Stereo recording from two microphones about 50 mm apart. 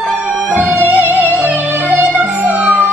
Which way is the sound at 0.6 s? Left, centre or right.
Right.